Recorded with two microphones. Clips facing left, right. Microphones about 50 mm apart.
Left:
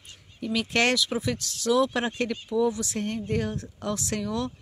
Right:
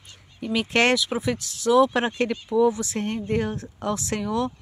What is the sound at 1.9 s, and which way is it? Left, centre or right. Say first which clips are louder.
Speech: right 4 dB; right.